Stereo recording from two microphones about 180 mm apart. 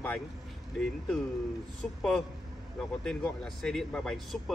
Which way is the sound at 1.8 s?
Centre (ahead or behind).